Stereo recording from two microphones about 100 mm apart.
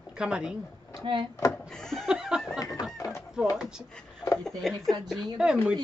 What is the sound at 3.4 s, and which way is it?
Speech, 5° right (ahead or behind).